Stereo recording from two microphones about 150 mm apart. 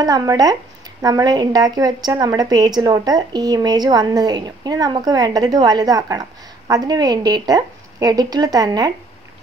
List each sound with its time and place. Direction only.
0.0 s a woman's voice: 25° right (ahead or behind)